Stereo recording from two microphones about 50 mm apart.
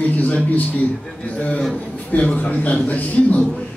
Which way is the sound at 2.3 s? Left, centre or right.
Left.